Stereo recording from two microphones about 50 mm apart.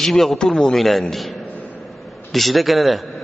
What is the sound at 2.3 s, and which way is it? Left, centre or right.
Speech, centre.